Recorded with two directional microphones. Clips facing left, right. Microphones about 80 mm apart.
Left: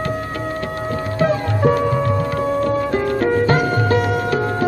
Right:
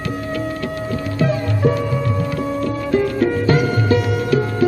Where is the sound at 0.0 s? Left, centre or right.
Left.